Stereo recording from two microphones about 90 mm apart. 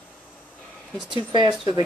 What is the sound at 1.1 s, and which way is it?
Speech, 60° right (ahead or behind).